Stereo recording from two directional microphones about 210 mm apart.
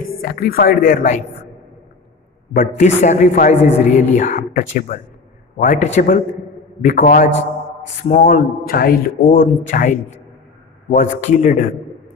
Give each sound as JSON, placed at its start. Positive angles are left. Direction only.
{"t": 0.0, "sound": "speech", "side_deg": 45}
{"t": 2.8, "sound": "a man's voice", "side_deg": 35}
{"t": 3.5, "sound": "a woman's voice", "side_deg": 10}
{"t": 3.9, "sound": "a man's voice", "side_deg": 35}